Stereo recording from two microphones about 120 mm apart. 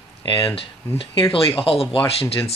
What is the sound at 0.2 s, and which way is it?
Speech, 50° left (ahead or behind).